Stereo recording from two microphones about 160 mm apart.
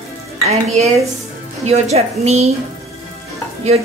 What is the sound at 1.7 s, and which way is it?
Speech, 40° right (ahead or behind).